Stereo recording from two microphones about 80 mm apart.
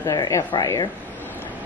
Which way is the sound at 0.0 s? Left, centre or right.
Left.